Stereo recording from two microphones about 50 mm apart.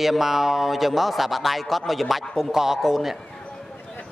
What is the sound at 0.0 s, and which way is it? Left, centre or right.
A man's voice, centre.